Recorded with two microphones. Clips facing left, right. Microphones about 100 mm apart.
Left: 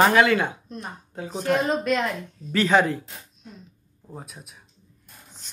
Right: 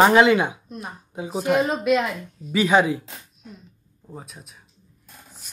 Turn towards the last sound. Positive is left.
turn(degrees=-10)  # may be behind; listen again after turning